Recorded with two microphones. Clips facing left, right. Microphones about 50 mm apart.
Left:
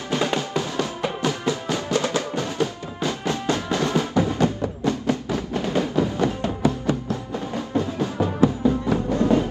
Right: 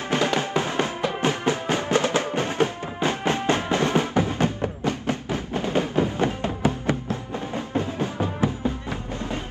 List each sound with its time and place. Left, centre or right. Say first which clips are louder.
0.1 s music: right 1 dB; right
9.1 s music: left 12 dB; left